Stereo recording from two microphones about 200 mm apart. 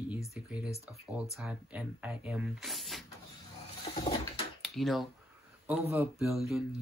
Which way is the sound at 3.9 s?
30° left (ahead or behind).